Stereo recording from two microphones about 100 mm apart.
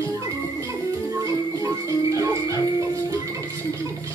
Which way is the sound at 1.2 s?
35° right (ahead or behind).